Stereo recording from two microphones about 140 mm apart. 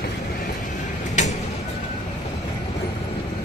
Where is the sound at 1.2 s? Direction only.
55° left (ahead or behind).